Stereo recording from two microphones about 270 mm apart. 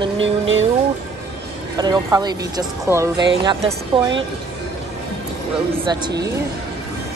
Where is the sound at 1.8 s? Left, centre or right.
Centre.